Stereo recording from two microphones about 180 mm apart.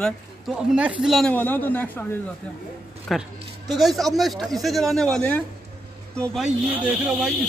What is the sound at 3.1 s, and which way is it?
A man's voice, centre (ahead or behind).